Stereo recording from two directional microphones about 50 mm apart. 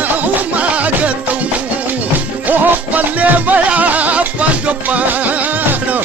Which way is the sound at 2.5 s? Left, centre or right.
Right.